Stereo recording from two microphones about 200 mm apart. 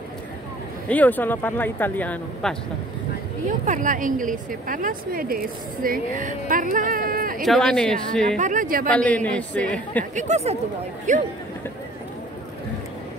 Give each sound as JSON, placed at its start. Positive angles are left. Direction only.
{"t": 0.8, "sound": "speech", "side_deg": 10}
{"t": 3.6, "sound": "a woman's voice", "side_deg": -40}
{"t": 7.4, "sound": "a woman's voice", "side_deg": 0}
{"t": 8.4, "sound": "speech", "side_deg": -40}
{"t": 8.8, "sound": "speech", "side_deg": 5}
{"t": 10.1, "sound": "speech", "side_deg": -35}